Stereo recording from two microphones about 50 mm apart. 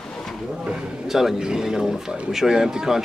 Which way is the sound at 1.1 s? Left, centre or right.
Centre.